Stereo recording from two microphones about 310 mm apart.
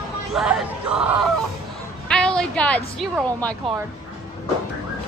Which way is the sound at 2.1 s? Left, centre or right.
Centre.